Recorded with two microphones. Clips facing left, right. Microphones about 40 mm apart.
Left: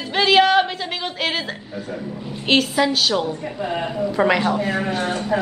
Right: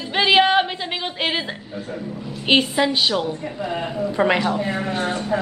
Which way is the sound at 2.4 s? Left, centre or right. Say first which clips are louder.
Even; centre.